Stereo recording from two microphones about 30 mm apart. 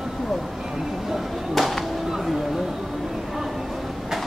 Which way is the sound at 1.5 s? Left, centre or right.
Centre.